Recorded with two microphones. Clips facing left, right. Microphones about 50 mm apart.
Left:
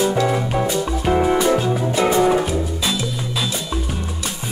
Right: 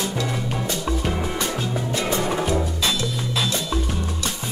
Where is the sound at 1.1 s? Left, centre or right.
Left.